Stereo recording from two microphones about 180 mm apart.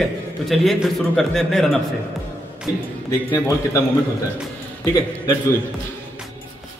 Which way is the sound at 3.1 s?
20° left (ahead or behind).